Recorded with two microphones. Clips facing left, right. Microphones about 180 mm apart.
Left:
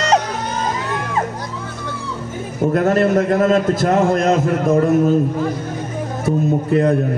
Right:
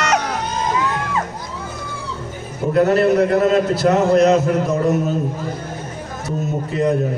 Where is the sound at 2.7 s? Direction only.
50° left (ahead or behind).